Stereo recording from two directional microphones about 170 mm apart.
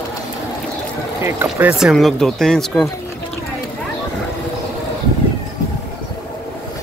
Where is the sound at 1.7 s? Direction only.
Centre (ahead or behind).